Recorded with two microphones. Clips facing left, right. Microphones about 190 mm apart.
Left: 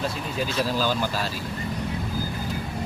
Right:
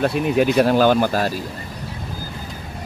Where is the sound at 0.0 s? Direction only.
65° right (ahead or behind).